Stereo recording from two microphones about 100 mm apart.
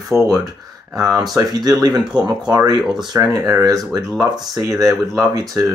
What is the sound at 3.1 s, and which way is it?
Speech, 30° right (ahead or behind).